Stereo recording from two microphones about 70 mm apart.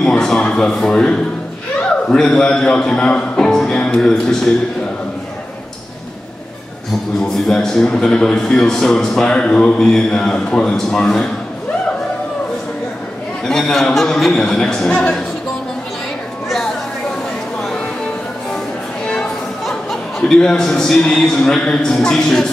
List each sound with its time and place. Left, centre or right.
0.0 s a man's voice: centre
7.3 s a man's voice: centre
13.5 s a man's voice: centre
19.6 s speech: centre